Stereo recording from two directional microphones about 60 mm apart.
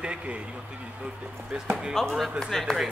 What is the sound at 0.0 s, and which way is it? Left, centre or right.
Speech, centre.